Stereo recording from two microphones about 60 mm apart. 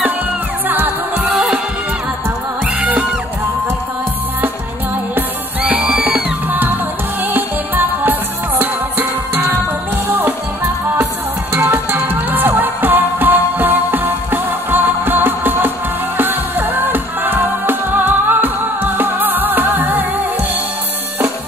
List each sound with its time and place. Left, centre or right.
0.7 s music: right
2.6 s music: right
5.1 s music: right
7.2 s music: right